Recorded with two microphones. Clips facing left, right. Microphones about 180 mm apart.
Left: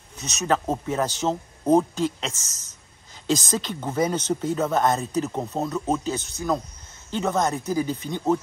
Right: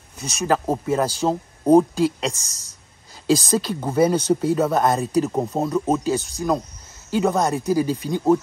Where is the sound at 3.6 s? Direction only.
10° right (ahead or behind).